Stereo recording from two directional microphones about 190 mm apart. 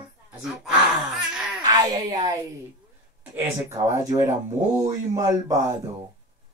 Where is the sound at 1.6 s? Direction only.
20° right (ahead or behind).